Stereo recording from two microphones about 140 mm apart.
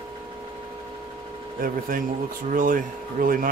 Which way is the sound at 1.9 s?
80° right.